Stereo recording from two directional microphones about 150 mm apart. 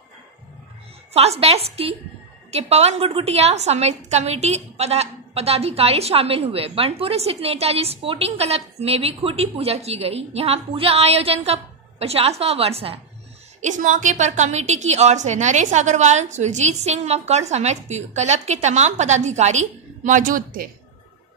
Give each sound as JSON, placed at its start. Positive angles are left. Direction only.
{"t": 1.1, "sound": "a woman's voice", "side_deg": -40}
{"t": 13.6, "sound": "a woman's voice", "side_deg": -55}